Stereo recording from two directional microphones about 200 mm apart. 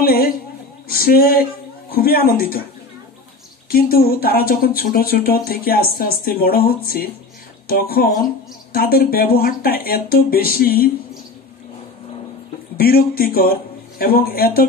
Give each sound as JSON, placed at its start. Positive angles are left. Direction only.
{"t": 0.0, "sound": "a sound", "side_deg": 50}
{"t": 0.8, "sound": "speech", "side_deg": 50}
{"t": 3.7, "sound": "speech", "side_deg": 50}
{"t": 12.7, "sound": "speech", "side_deg": 50}